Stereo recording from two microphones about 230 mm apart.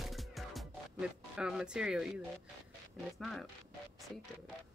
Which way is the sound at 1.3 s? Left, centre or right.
Centre.